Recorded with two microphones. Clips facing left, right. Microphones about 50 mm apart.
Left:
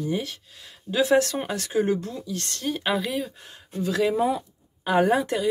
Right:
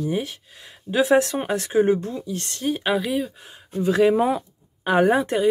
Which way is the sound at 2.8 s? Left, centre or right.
Centre.